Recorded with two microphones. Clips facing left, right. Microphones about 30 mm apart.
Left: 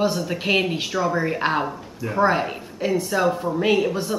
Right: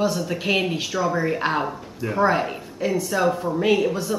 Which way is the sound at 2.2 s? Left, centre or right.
Centre.